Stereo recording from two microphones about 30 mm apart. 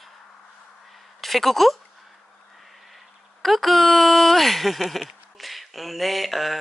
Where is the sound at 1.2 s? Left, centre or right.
Centre.